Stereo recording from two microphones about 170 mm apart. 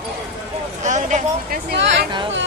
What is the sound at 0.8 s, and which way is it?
Speech, 45° right (ahead or behind).